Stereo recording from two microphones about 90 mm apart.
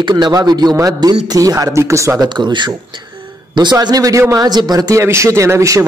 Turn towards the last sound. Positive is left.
turn(degrees=-35)  # may be behind; listen again after turning